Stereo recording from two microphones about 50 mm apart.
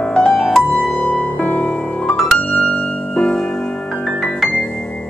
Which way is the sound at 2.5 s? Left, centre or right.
Left.